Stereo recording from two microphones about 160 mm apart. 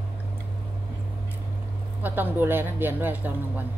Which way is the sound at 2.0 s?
10° right (ahead or behind).